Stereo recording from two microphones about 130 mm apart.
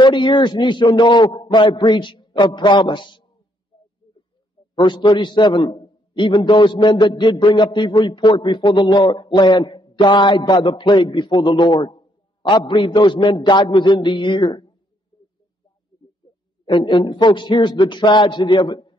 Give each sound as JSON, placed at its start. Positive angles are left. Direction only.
{"t": 0.0, "sound": "a man's voice", "side_deg": 35}
{"t": 4.7, "sound": "a man's voice", "side_deg": 35}
{"t": 16.6, "sound": "a man's voice", "side_deg": 35}